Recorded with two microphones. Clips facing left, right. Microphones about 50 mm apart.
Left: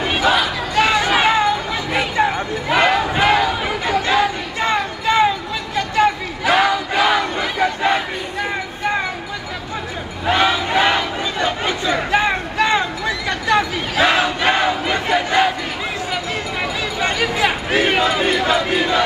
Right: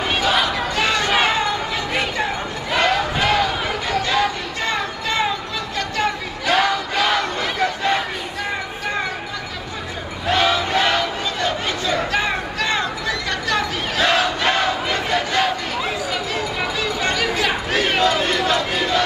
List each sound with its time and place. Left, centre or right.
0.0 s crowd: centre
0.8 s a sound: centre
2.1 s a sound: centre
5.8 s crowd: centre
10.2 s crowd: centre
17.0 s crowd: centre